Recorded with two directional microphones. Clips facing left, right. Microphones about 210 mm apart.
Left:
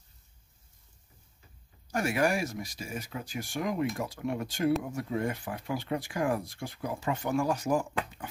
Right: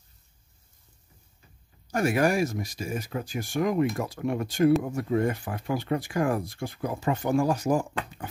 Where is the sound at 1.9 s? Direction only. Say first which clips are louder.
Right 4 dB; 40° right (ahead or behind).